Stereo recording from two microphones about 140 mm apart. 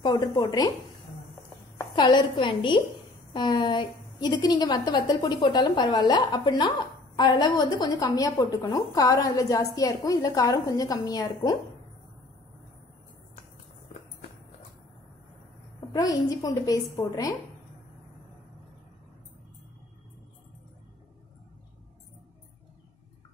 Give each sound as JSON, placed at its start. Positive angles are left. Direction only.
{"t": 0.0, "sound": "a woman's voice", "side_deg": 30}
{"t": 2.0, "sound": "a woman's voice", "side_deg": 35}
{"t": 15.9, "sound": "a woman's voice", "side_deg": 25}